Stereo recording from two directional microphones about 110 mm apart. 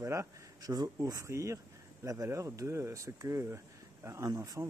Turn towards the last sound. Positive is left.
turn(degrees=-30)  # may be behind; listen again after turning